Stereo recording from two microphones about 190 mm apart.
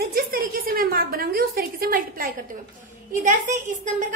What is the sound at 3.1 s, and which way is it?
Speech, 40° right (ahead or behind).